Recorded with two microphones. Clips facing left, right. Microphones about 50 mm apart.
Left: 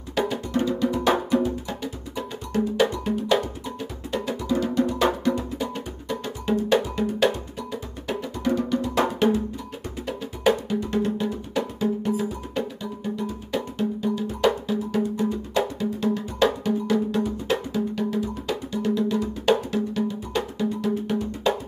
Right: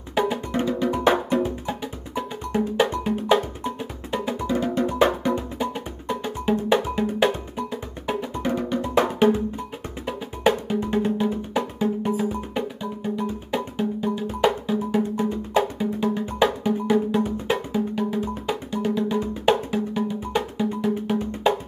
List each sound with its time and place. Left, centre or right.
0.3 s music: right
1.7 s music: centre
3.0 s cowbell: centre
4.1 s music: right
7.7 s music: centre